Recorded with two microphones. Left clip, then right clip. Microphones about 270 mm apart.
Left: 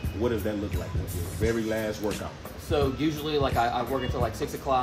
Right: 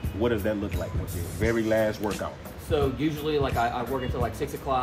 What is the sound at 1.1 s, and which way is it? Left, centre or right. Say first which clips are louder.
Speech: right 1 dB; centre.